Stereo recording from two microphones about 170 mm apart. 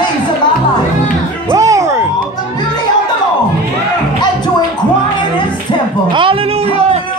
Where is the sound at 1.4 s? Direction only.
20° right (ahead or behind).